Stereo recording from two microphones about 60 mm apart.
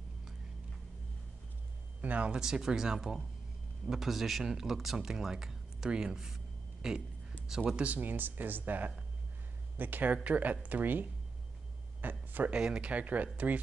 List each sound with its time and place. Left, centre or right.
2.0 s speech: right; by 7.8 s centre
7.8 s speech: right
12.0 s a sound: right
12.5 s speech: centre